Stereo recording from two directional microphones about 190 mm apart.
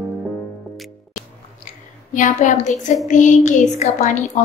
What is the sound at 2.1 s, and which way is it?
A woman's voice, 40° left (ahead or behind).